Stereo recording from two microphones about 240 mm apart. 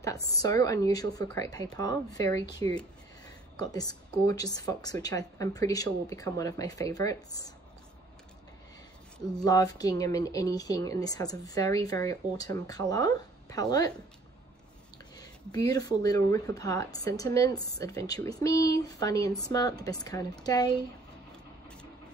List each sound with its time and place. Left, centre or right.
0.0 s speech: centre
9.4 s speech: centre
15.1 s speech: centre